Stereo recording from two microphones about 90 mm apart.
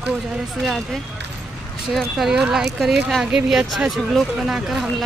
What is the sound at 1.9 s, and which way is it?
Speech, centre (ahead or behind).